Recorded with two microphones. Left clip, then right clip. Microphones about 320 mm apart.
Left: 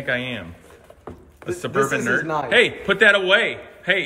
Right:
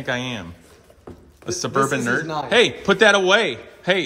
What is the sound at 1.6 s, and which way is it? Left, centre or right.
A man's voice, centre.